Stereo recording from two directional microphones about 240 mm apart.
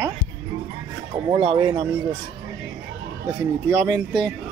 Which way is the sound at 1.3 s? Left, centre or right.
Right.